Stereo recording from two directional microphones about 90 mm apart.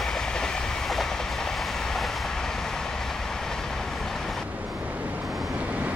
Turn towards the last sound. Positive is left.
turn(degrees=-15)  # may be behind; listen again after turning